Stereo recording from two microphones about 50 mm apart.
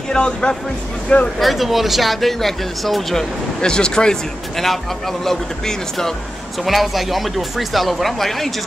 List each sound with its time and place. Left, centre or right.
0.1 s speech: centre
1.4 s speech: centre
4.6 s a man's voice: centre